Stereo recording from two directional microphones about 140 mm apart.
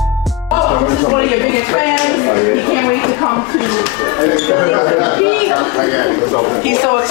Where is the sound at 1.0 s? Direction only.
20° left (ahead or behind).